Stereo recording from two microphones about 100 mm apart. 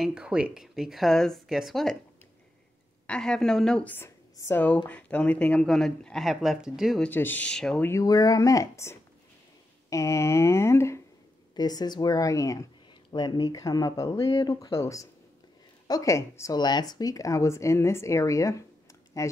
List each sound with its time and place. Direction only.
0.0 s speech: 10° right (ahead or behind)
3.1 s speech: 5° left (ahead or behind)
3.9 s speech: 25° left (ahead or behind)
4.6 s speech: 15° left (ahead or behind); by 7.0 s 5° right (ahead or behind)
7.0 s speech: 20° left (ahead or behind)
8.0 s speech: 40° left (ahead or behind)
11.5 s speech: 45° left (ahead or behind)
16.5 s speech: 45° left (ahead or behind)